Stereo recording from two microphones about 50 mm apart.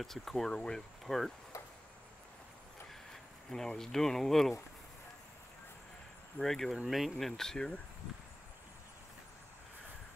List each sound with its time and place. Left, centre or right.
0.0 s speech: centre
2.9 s speech: centre
6.4 s speech: centre